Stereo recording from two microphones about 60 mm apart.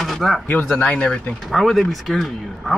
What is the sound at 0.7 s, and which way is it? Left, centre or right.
Speech, left.